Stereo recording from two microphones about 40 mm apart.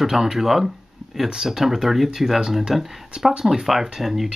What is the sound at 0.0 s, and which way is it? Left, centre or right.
Speech, centre.